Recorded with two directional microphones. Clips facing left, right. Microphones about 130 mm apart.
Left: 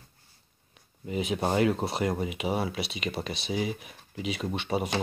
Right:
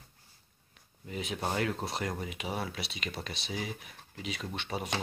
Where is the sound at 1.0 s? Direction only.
10° left (ahead or behind).